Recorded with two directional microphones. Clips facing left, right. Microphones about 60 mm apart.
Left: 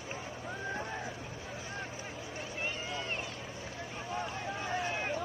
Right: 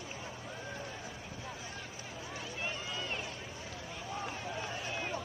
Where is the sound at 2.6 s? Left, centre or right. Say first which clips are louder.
Left 2 dB; left.